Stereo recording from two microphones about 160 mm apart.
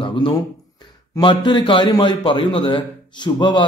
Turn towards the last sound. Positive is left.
turn(degrees=30)  # may be behind; listen again after turning